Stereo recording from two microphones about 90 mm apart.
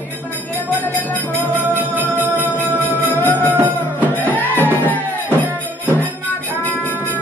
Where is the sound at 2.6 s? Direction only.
20° left (ahead or behind).